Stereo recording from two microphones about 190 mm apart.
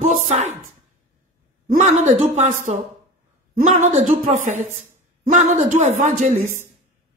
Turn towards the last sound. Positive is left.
turn(degrees=-35)  # may be behind; listen again after turning